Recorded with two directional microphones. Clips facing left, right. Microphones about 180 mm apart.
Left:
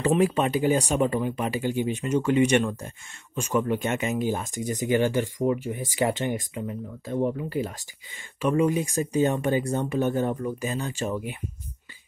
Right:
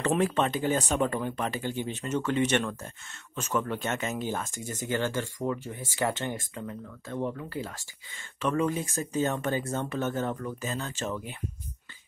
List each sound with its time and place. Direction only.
0.0 s speech: 10° left (ahead or behind)